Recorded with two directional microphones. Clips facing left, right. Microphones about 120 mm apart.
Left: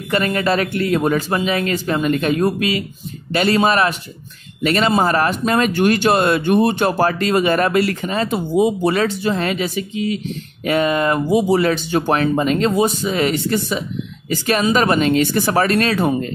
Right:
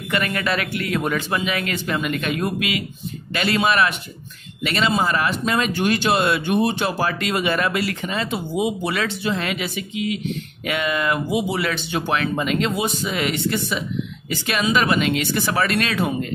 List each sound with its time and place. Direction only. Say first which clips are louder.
0.1 s speech: left 5 dB; 35° left (ahead or behind)